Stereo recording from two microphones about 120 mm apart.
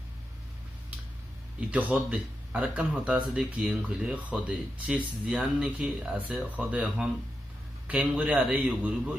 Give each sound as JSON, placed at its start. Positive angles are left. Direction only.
{"t": 1.6, "sound": "speech", "side_deg": -10}